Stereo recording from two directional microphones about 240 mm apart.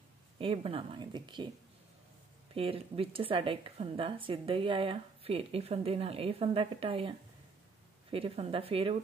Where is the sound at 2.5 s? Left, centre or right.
Right.